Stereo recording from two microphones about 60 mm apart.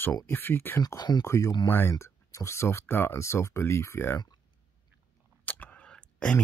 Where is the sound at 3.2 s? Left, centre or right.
Left.